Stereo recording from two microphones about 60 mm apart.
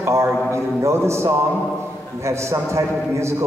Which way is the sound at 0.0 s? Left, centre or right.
Right.